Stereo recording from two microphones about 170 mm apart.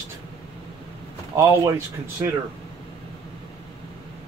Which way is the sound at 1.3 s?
15° right (ahead or behind).